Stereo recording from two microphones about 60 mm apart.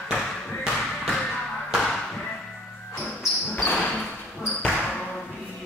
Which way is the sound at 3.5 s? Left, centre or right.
Left.